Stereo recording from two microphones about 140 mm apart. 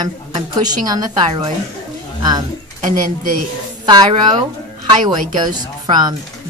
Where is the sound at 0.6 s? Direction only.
30° right (ahead or behind).